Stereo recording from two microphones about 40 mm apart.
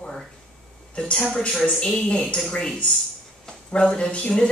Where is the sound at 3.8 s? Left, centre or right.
Left.